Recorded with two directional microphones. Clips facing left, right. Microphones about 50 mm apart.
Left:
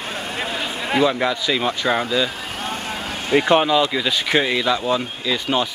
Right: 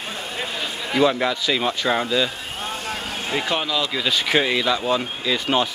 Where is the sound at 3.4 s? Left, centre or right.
Left.